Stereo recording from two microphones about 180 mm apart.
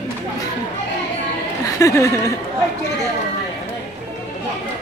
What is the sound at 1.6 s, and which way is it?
Speech, 15° left (ahead or behind).